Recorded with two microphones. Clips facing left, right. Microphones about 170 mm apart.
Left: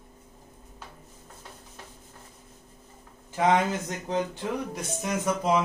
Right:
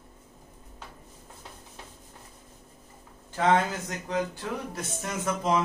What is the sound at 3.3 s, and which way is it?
Speech, 15° left (ahead or behind).